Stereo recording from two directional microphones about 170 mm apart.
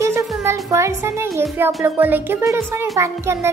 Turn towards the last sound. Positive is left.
turn(degrees=-15)  # may be behind; listen again after turning